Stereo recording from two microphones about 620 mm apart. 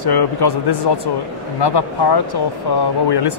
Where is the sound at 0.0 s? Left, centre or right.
Left.